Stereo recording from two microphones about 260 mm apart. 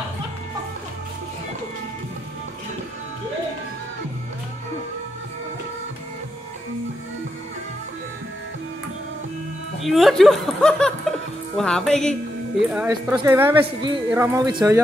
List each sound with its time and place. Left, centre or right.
9.8 s a woman's voice: centre